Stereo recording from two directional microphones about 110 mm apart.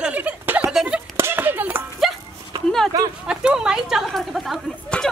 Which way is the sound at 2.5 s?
35° right (ahead or behind).